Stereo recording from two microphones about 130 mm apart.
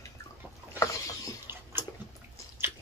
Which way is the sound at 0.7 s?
25° left (ahead or behind).